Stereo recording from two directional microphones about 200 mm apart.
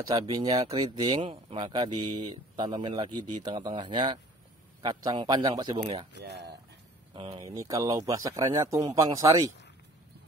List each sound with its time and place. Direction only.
0.0 s speech: 20° right (ahead or behind)
6.1 s speech: 55° right (ahead or behind)
7.3 s a man's voice: 15° right (ahead or behind)